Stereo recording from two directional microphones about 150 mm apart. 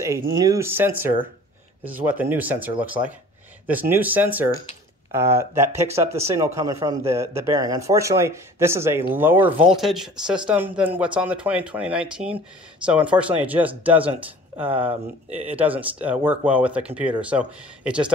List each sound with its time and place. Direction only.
0.0 s speech: 20° right (ahead or behind)
14.6 s speech: 35° right (ahead or behind)
15.5 s speech: 10° right (ahead or behind)